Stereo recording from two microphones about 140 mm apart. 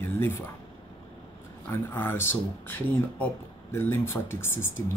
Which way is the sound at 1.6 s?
15° left (ahead or behind).